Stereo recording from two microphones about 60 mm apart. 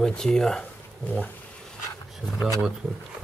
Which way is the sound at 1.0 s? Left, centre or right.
Left.